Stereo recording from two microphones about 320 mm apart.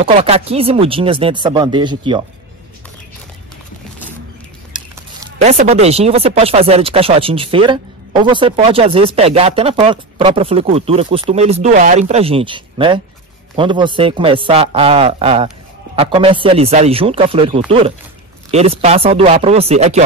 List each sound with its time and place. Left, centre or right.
0.0 s speech: centre
5.2 s speech: right